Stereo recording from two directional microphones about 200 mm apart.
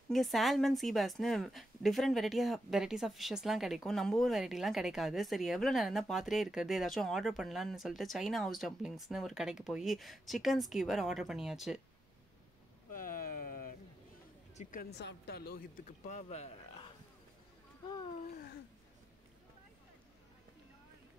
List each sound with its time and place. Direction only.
0.1 s a woman's voice: centre (ahead or behind)
12.9 s a sound: 45° left (ahead or behind)
14.6 s speech: 45° left (ahead or behind); by 18.2 s 20° left (ahead or behind)